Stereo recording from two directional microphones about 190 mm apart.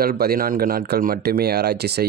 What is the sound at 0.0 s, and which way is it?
Speech, 55° right (ahead or behind).